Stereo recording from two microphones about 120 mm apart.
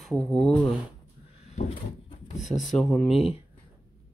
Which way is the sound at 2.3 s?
80° left.